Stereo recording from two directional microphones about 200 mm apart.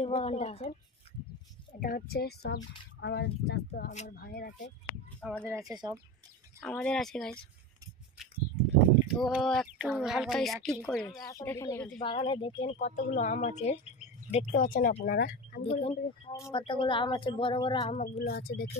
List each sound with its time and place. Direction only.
0.0 s speech: 30° left (ahead or behind)
1.8 s speech: 45° left (ahead or behind)
5.2 s speech: 5° right (ahead or behind)
5.7 s speech: 20° right (ahead or behind)
6.6 s speech: 5° left (ahead or behind)
9.0 s speech: centre (ahead or behind)
11.3 s speech: 15° left (ahead or behind)
12.0 s speech: 25° left (ahead or behind)
12.7 s speech: 35° left (ahead or behind)
15.6 s speech: 30° left (ahead or behind)
16.3 s speech: 20° left (ahead or behind); by 18.1 s 35° left (ahead or behind)
18.1 s speech: 50° left (ahead or behind)